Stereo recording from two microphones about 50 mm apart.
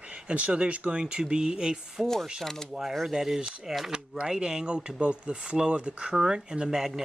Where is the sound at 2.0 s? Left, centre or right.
Centre.